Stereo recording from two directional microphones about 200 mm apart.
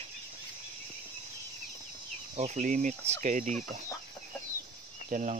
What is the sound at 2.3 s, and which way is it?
Speech, 35° right (ahead or behind).